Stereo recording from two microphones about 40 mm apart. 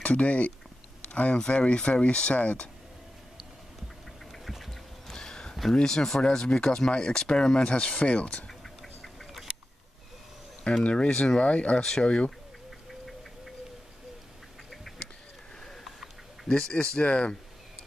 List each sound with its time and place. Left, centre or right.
0.0 s speech: left
4.3 s a sound: centre
5.8 s speech: centre
8.5 s bird: centre
10.8 s speech: left
11.4 s speech: left
14.9 s a sound: centre
16.4 s speech: left